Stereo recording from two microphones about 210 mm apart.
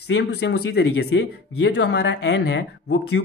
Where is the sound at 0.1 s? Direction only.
55° left (ahead or behind).